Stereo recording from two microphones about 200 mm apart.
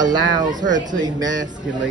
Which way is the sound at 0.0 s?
20° right (ahead or behind).